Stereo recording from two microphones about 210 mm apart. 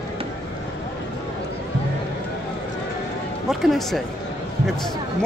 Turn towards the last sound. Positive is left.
turn(degrees=0)  # may be behind; listen again after turning